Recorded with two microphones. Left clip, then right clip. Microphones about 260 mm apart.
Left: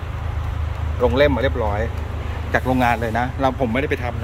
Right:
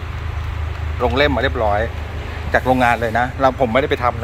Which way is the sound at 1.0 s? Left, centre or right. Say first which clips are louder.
Even; centre.